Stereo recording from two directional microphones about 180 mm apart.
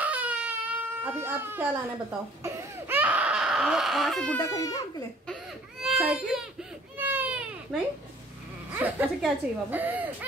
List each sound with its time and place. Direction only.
0.0 s speech: 10° right (ahead or behind)
4.4 s speech: 20° left (ahead or behind)
5.8 s speech: 5° right (ahead or behind)
7.0 s baby cry: 10° right (ahead or behind)
8.7 s a woman's voice: 10° right (ahead or behind)